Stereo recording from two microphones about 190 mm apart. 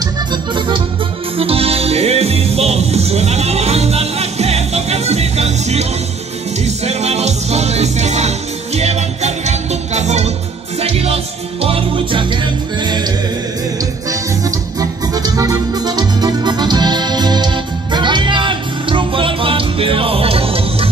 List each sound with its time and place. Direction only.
0.3 s accordion: 25° right (ahead or behind)
1.4 s music: 30° right (ahead or behind)
14.4 s music: 20° right (ahead or behind)